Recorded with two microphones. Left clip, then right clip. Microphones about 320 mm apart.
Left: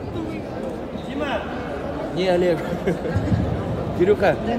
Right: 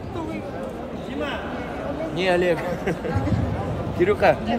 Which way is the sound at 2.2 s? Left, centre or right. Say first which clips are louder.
Left 1 dB; right.